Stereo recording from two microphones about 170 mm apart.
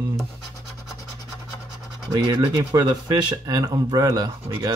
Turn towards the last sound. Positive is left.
turn(degrees=-25)  # may be behind; listen again after turning